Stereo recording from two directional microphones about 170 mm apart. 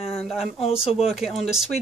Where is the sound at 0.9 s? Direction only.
Centre (ahead or behind).